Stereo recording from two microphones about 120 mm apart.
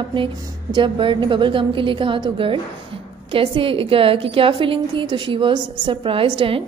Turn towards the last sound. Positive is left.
turn(degrees=-50)  # may be behind; listen again after turning